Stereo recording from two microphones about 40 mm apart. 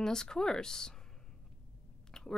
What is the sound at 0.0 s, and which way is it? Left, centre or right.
Speech, centre.